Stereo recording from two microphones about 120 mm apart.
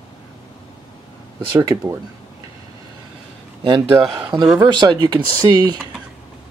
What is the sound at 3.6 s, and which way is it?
Speech, 40° right (ahead or behind).